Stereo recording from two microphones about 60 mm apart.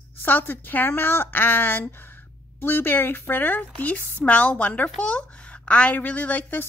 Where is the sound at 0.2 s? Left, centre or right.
Left.